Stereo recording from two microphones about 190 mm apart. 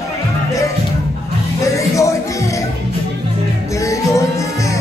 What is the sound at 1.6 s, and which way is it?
Music, 15° left (ahead or behind).